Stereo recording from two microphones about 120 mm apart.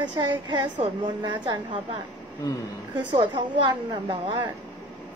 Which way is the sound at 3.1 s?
40° right (ahead or behind).